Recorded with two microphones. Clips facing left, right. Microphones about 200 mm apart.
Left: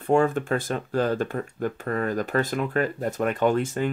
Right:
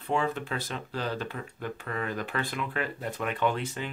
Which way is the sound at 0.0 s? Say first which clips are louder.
Left 8 dB; 50° left (ahead or behind).